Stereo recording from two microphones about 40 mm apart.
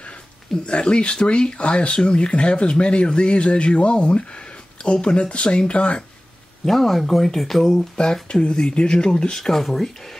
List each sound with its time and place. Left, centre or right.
0.7 s speech: left
6.6 s speech: centre
8.0 s speech: left
9.4 s speech: centre